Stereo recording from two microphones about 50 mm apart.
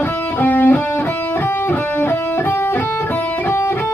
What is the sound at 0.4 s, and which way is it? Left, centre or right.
Music, left.